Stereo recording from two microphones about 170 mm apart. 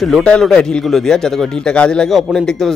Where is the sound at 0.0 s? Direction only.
5° left (ahead or behind).